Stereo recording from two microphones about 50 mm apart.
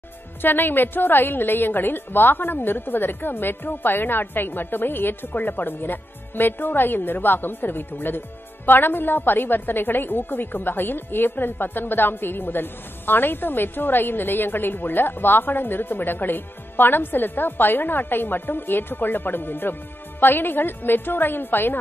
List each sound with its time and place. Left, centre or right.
0.4 s a woman's voice: left